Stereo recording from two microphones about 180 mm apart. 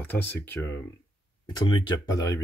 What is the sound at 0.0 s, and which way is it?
Speech, 10° left (ahead or behind).